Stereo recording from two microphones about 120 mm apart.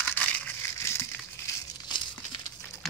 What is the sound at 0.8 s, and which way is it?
Crumpling, 20° left (ahead or behind).